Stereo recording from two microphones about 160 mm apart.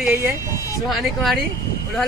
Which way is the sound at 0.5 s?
20° left (ahead or behind).